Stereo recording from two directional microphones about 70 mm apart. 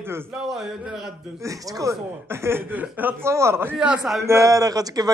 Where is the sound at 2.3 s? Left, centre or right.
Right.